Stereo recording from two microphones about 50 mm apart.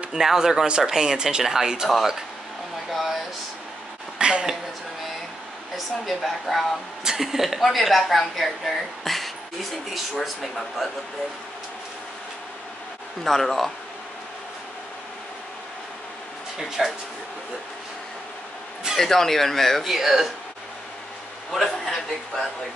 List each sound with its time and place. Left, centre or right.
0.1 s speech: centre
2.9 s a sound: centre
4.2 s speech: centre
6.0 s a woman's voice: centre
13.2 s a woman's voice: centre
16.5 s a woman's voice: centre
18.9 s speech: centre
19.9 s speech: centre
21.5 s a sound: centre